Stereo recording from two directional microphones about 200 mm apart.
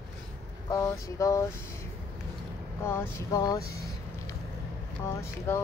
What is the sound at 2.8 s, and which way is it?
Speech, 10° left (ahead or behind).